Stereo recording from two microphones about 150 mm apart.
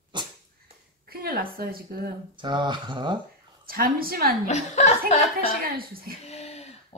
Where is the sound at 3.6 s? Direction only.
75° right (ahead or behind).